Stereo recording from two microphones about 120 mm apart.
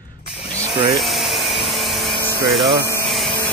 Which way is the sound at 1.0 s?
Centre (ahead or behind).